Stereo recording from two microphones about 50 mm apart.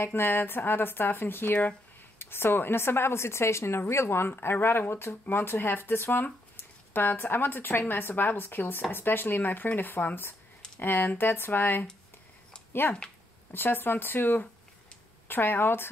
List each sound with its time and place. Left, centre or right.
0.0 s speech: left
4.3 s speech: left
13.5 s speech: left